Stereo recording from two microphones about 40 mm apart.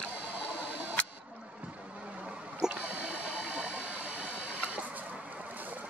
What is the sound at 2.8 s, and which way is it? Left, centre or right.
Sewing machine, right.